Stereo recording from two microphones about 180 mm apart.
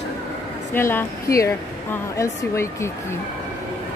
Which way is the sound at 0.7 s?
15° left (ahead or behind).